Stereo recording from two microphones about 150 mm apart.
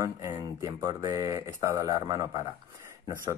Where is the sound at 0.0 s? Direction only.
20° right (ahead or behind).